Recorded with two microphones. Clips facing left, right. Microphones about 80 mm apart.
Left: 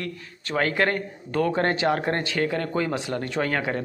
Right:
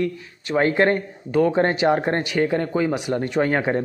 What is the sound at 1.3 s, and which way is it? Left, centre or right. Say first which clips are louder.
Speech: right 5 dB; centre.